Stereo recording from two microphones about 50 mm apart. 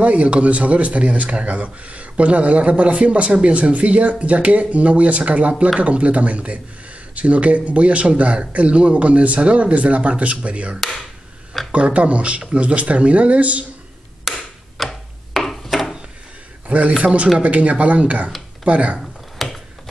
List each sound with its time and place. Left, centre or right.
0.0 s speech: right
10.8 s speech: centre
11.7 s speech: right
14.2 s a sound: centre
16.6 s speech: right
18.9 s a sound: centre